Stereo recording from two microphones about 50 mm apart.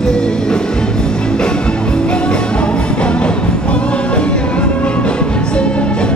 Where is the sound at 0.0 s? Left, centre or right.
Centre.